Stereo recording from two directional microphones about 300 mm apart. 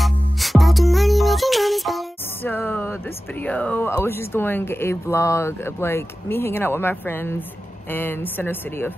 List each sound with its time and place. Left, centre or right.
0.0 s music: centre
7.9 s a woman's voice: centre